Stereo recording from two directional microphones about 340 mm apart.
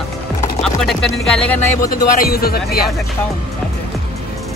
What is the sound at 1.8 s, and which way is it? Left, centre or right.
Speech, left.